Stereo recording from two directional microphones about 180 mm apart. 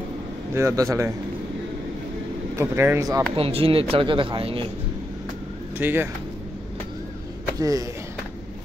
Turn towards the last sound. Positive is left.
turn(degrees=-20)  # may be behind; listen again after turning